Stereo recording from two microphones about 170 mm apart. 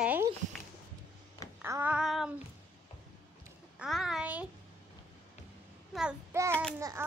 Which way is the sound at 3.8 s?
Centre (ahead or behind).